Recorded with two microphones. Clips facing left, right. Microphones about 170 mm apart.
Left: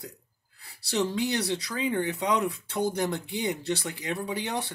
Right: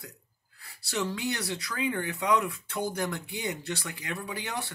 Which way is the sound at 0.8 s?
25° left (ahead or behind).